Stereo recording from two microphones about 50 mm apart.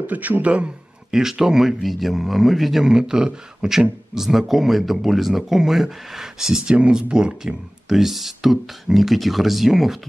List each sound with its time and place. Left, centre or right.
0.0 s a man's voice: right
1.1 s speech: centre
7.9 s speech: centre